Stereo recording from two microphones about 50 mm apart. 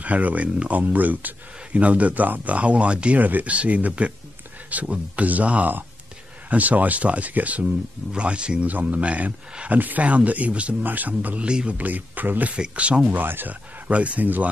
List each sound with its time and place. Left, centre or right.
0.0 s speech: right
8.6 s speech: right
11.4 s speech: centre
11.8 s speech: right
12.5 s speech: right
13.1 s speech: right
13.8 s speech: right